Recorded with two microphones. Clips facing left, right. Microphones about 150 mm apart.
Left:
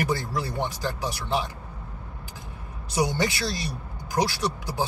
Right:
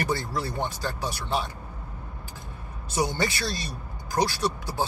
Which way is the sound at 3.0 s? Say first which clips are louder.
Left 1 dB; 15° left (ahead or behind).